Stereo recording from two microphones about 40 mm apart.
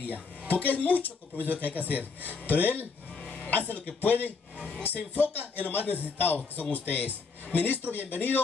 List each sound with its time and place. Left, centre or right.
0.0 s speech: left
1.7 s speech: right
2.2 s speech: left
3.2 s music: left
3.4 s speech: left